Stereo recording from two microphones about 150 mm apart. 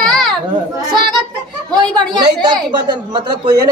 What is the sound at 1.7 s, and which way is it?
A woman's voice, 30° right (ahead or behind).